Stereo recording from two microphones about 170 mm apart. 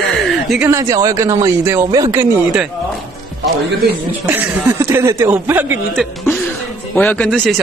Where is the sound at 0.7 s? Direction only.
20° right (ahead or behind).